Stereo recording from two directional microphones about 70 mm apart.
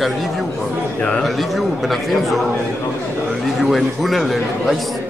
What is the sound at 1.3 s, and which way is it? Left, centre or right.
Speech, centre.